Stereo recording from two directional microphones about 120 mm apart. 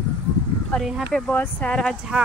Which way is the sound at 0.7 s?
10° left (ahead or behind).